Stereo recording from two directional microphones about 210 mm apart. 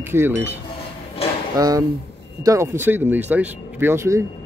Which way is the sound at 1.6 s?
15° right (ahead or behind).